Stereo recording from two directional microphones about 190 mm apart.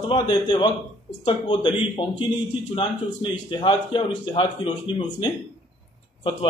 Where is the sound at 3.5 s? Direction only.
25° left (ahead or behind).